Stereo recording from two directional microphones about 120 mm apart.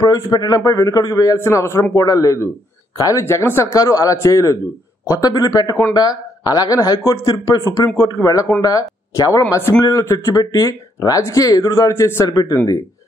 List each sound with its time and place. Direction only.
0.0 s speech: 35° left (ahead or behind)